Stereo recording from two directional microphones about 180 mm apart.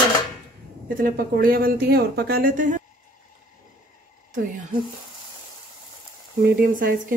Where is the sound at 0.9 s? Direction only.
55° right (ahead or behind).